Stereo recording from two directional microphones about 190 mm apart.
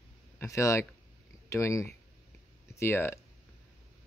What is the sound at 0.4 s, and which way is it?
Speech, 15° left (ahead or behind).